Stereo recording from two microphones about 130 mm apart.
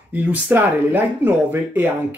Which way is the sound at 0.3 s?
15° right (ahead or behind).